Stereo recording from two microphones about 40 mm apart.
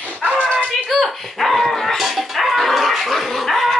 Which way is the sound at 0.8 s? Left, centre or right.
Centre.